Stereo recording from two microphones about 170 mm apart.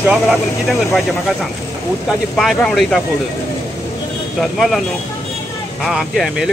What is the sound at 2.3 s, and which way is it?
Speech, centre (ahead or behind).